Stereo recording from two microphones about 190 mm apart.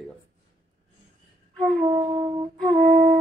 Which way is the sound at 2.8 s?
40° right (ahead or behind).